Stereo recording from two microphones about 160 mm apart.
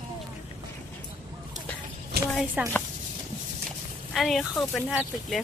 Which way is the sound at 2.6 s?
10° right (ahead or behind).